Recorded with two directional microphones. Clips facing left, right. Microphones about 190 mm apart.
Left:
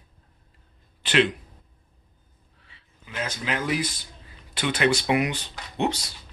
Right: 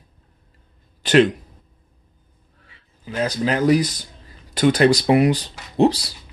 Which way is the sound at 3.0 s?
35° right (ahead or behind).